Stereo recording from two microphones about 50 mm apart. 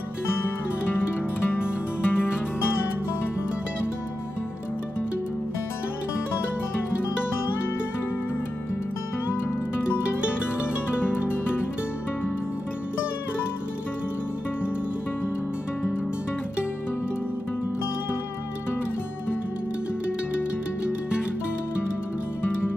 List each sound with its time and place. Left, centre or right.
1.5 s music: left
9.3 s music: left
11.1 s music: left